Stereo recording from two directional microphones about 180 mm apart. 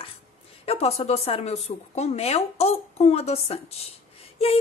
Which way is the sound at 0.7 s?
35° left (ahead or behind).